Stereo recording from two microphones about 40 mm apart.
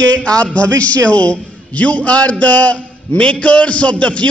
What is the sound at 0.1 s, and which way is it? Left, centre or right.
A man's voice, left.